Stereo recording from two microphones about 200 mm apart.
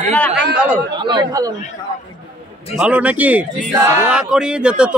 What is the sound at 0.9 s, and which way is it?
Speech, 20° right (ahead or behind).